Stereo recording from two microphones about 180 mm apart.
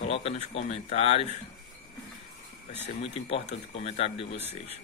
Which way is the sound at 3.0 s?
30° left (ahead or behind).